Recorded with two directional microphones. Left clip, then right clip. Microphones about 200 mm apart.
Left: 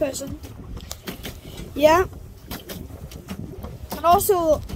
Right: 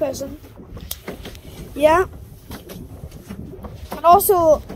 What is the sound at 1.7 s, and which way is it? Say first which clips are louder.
Speech: right 1 dB; 15° left (ahead or behind).